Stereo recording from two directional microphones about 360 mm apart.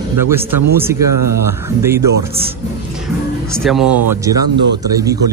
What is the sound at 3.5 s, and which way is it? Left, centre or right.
Speech, centre.